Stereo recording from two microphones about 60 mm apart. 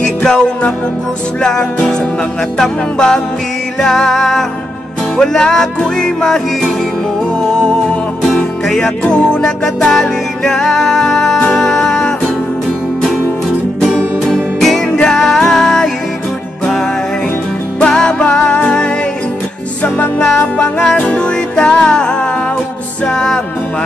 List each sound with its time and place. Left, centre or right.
0.0 s music: centre
1.4 s music: centre
8.6 s music: centre
13.7 s music: centre
14.9 s music: centre
17.7 s music: centre
20.2 s music: centre